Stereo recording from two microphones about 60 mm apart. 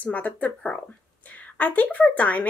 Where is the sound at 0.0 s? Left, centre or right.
Left.